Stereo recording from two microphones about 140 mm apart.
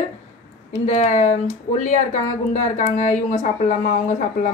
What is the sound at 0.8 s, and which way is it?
A woman's voice, 60° left (ahead or behind).